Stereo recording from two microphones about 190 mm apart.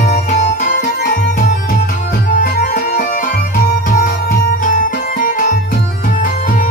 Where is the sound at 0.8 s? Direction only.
60° left (ahead or behind).